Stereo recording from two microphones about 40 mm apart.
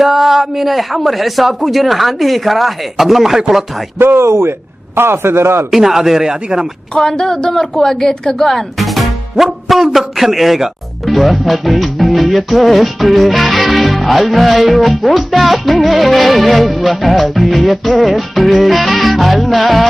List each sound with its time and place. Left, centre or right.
0.0 s a woman's voice: centre
4.0 s a man's voice: right
5.7 s speech: centre
6.9 s a woman's voice: centre